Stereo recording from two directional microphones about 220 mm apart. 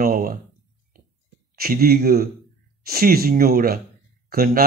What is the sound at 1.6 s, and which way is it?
A man's voice, 45° right (ahead or behind).